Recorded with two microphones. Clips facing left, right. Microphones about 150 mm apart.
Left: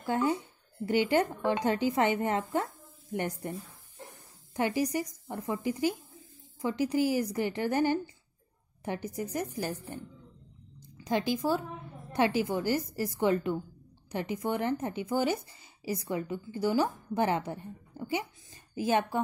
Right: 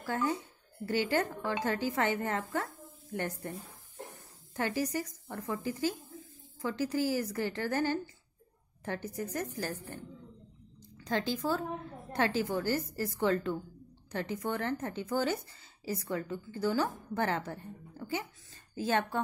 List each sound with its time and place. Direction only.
0.0 s speech: 20° left (ahead or behind)
4.6 s speech: 15° left (ahead or behind)
11.1 s speech: 15° left (ahead or behind)